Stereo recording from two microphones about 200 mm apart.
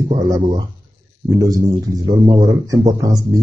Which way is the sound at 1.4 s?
15° right (ahead or behind).